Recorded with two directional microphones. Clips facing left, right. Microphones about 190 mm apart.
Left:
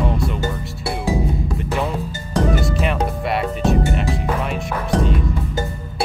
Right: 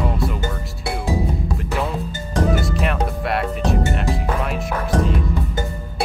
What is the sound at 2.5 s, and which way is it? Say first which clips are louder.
Speech: left 1 dB; centre (ahead or behind).